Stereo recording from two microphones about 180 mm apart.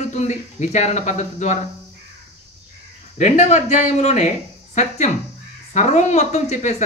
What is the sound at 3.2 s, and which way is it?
Speech, 40° left (ahead or behind).